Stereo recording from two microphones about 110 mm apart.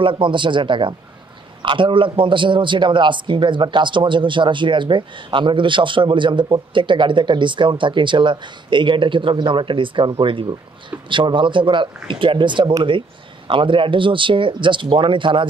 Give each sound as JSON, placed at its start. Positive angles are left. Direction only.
{"t": 0.0, "sound": "a man's voice", "side_deg": -45}